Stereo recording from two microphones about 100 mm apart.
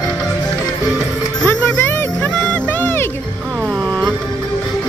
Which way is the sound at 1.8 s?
20° left (ahead or behind).